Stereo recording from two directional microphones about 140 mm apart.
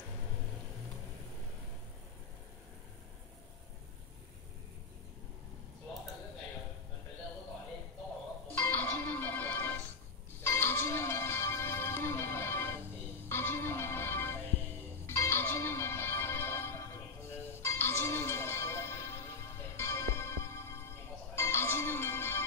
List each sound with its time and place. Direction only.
8.5 s music: 15° left (ahead or behind)